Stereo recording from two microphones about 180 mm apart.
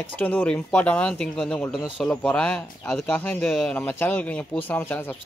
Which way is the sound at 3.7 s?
10° left (ahead or behind).